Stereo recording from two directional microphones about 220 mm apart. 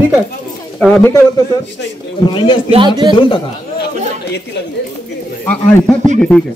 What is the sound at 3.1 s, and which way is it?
Speech, 20° left (ahead or behind).